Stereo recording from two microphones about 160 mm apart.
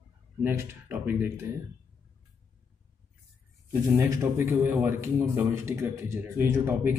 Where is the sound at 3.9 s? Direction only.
15° right (ahead or behind).